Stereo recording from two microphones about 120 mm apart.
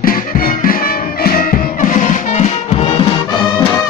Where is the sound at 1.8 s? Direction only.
90° left; by 3.1 s 55° left (ahead or behind).